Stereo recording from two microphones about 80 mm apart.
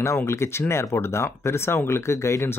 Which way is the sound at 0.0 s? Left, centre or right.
Left.